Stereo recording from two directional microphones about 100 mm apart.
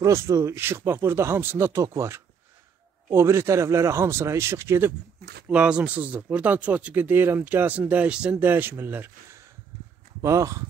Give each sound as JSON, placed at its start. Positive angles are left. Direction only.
{"t": 0.0, "sound": "speech", "side_deg": -30}
{"t": 5.5, "sound": "speech", "side_deg": -10}